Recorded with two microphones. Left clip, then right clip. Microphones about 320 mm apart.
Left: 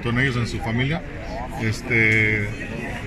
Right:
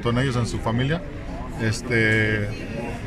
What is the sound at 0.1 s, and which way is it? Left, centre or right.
Speech, centre.